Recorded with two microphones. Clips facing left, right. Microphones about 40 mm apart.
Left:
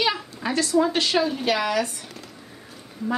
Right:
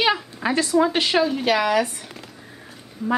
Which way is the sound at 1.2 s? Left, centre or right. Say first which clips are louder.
Right 3 dB; centre.